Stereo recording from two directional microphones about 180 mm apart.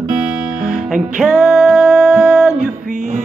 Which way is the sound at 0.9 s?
5° right (ahead or behind).